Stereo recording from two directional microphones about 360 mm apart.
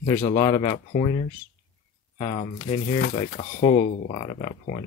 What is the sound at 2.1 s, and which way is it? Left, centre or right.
Speech, centre.